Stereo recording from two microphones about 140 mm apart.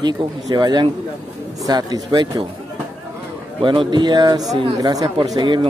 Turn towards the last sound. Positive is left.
turn(degrees=-35)  # may be behind; listen again after turning